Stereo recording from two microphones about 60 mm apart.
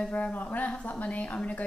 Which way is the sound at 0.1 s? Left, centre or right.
Left.